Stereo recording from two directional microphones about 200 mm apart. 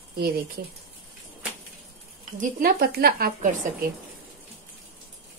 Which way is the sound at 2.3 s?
45° right (ahead or behind).